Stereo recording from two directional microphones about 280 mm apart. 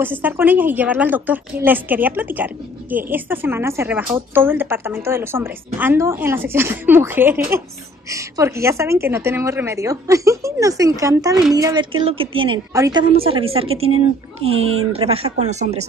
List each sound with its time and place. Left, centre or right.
0.0 s a woman's voice: centre; by 15.9 s right